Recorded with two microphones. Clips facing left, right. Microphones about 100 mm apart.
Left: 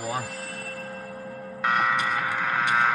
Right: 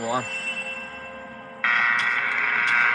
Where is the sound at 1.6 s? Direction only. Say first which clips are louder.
Left 1 dB; 80° right.